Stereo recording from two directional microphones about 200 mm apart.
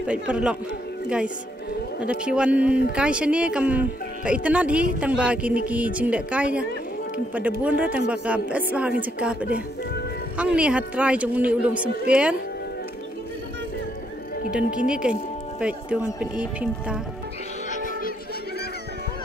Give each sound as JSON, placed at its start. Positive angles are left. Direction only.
{"t": 0.0, "sound": "speech", "side_deg": -5}
{"t": 7.9, "sound": "speech", "side_deg": -5}
{"t": 14.5, "sound": "speech", "side_deg": -5}
{"t": 17.6, "sound": "music", "side_deg": 40}